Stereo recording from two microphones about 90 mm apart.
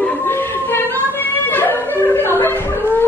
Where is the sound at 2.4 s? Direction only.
25° left (ahead or behind).